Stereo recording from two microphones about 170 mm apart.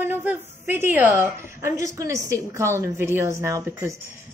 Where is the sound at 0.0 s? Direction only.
10° right (ahead or behind).